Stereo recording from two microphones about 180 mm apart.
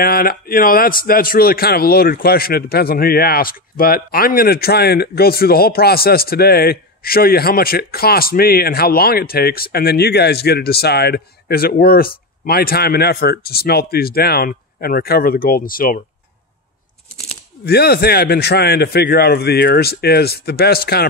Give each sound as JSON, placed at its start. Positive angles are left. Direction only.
{"t": 0.0, "sound": "speech", "side_deg": 55}
{"t": 17.6, "sound": "speech", "side_deg": 60}